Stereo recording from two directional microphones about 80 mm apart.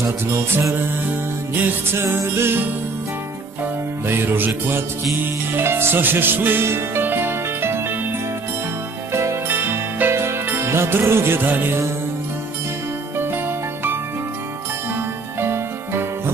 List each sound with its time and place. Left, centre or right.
0.0 s mantra: right
1.5 s music: right
2.1 s mantra: right
4.1 s music: right
9.1 s music: right
15.4 s music: right